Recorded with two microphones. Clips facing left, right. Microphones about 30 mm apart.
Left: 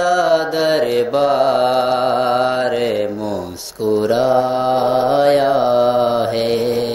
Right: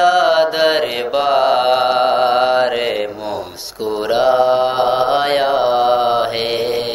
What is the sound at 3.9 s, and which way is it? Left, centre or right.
Mantra, right.